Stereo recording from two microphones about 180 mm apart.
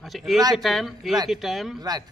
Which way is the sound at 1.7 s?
20° right (ahead or behind).